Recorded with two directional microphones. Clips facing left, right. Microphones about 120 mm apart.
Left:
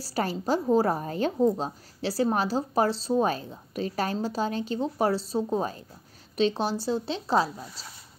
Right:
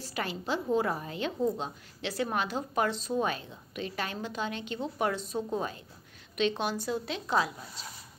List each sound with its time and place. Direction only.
0.0 s a woman's voice: 40° left (ahead or behind)